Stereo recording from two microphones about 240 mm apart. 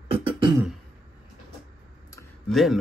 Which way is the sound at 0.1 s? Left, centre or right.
Right.